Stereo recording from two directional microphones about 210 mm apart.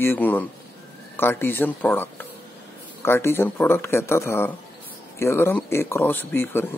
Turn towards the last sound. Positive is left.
turn(degrees=10)  # may be behind; listen again after turning